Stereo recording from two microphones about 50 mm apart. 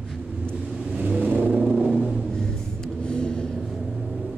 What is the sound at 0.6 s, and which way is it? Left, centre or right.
Vehicle, centre.